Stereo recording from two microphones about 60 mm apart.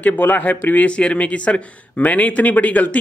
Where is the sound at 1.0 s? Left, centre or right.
Centre.